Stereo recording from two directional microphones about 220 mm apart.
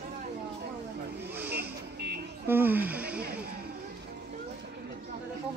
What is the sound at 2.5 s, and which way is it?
Speech, 10° right (ahead or behind).